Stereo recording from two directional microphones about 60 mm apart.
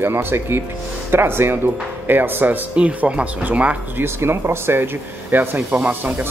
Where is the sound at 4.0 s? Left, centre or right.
Right.